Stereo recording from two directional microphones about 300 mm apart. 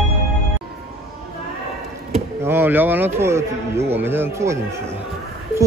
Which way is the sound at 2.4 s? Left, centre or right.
Centre.